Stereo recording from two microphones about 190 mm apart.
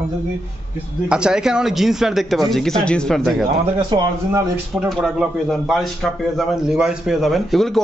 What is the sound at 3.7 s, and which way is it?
Speech, 20° right (ahead or behind).